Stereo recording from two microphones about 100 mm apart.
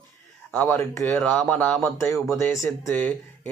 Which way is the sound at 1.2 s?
15° left (ahead or behind).